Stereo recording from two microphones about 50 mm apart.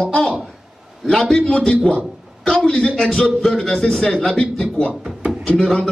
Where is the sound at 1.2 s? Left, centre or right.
Centre.